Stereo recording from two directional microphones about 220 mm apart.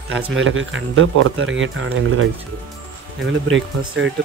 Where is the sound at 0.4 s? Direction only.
60° right (ahead or behind).